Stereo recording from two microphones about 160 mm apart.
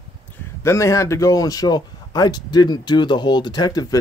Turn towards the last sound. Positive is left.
turn(degrees=25)  # may be behind; listen again after turning